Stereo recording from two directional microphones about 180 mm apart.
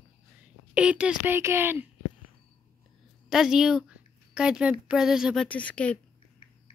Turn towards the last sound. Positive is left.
turn(degrees=5)  # may be behind; listen again after turning